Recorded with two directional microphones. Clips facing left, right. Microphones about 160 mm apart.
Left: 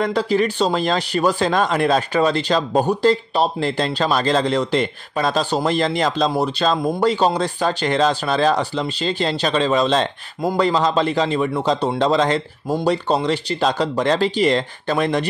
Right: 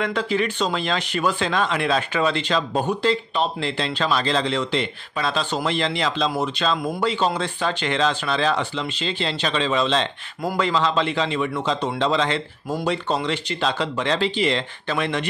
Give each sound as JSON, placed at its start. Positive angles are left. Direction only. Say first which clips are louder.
{"t": 0.0, "sound": "speech", "louder": "left 4 dB", "side_deg": 35}